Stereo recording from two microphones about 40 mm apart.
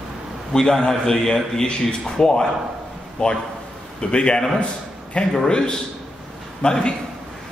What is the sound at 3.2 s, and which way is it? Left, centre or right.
A man's voice, left.